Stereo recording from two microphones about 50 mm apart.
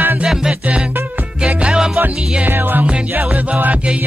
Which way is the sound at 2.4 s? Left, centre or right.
Right.